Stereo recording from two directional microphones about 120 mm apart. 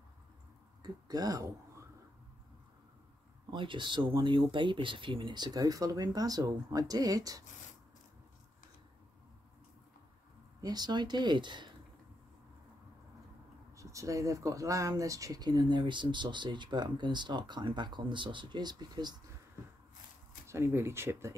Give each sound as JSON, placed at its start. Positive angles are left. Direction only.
{"t": 0.8, "sound": "speech", "side_deg": -35}
{"t": 3.4, "sound": "speech", "side_deg": -45}
{"t": 10.6, "sound": "speech", "side_deg": -35}
{"t": 13.7, "sound": "speech", "side_deg": -25}
{"t": 20.4, "sound": "speech", "side_deg": -20}